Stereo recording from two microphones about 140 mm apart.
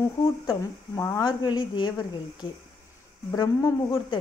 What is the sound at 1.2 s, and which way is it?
A woman's voice, 30° left (ahead or behind).